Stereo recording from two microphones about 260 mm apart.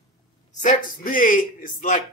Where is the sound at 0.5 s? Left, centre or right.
Left.